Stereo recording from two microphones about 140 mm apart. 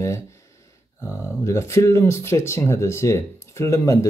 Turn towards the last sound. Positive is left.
turn(degrees=20)  # may be behind; listen again after turning